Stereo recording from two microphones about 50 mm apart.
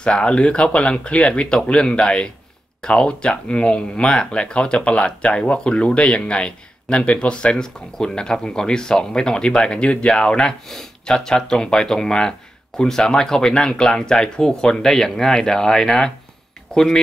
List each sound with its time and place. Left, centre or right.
0.0 s speech: centre